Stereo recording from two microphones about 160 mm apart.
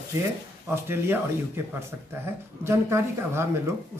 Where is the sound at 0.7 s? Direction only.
15° right (ahead or behind).